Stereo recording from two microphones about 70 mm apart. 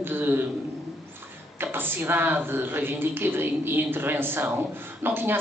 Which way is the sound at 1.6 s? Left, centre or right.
Right.